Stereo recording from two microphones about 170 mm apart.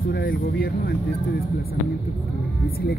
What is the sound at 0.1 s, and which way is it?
Speech, 60° left (ahead or behind).